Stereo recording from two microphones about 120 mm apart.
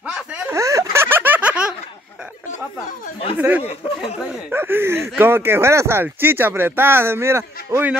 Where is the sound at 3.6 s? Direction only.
65° left (ahead or behind).